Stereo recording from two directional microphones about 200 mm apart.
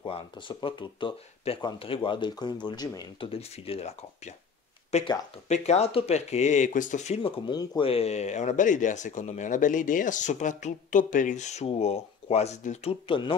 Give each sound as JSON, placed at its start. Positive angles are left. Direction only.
{"t": 0.0, "sound": "speech", "side_deg": 25}
{"t": 4.9, "sound": "speech", "side_deg": 30}
{"t": 7.4, "sound": "speech", "side_deg": 20}